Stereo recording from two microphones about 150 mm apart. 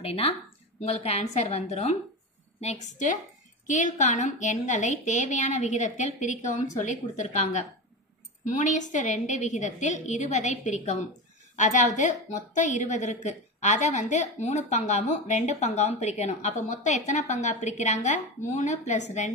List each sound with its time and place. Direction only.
0.0 s a woman's voice: 40° left (ahead or behind)